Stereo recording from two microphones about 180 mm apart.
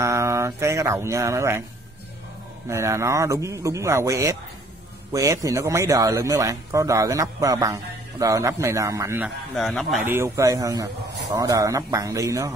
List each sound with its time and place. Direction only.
0.0 s mantra: 15° right (ahead or behind)
2.7 s speech: 15° right (ahead or behind)
9.6 s speech: centre (ahead or behind)
10.0 s speech: 15° right (ahead or behind)